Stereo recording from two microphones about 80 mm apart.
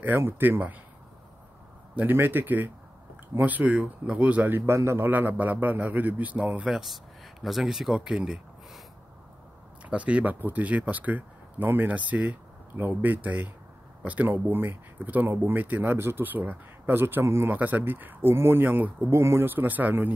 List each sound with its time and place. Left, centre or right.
0.0 s speech: right
2.0 s speech: right
6.7 s speech: centre
9.8 s speech: centre; by 17.5 s right
17.5 s speech: right